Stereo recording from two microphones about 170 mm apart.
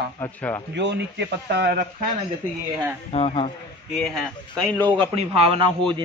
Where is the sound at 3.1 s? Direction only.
35° left (ahead or behind).